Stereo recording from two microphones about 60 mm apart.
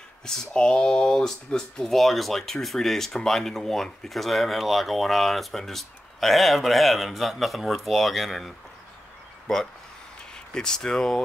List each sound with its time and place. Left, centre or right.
0.2 s speech: centre
10.3 s speech: centre